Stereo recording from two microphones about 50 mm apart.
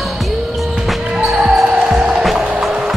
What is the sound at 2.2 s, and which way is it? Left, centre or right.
Music, centre.